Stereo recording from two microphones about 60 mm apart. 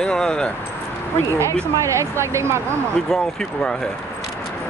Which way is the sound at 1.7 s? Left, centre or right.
Right.